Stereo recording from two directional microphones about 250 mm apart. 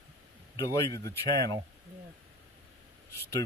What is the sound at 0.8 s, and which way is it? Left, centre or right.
Speech, centre.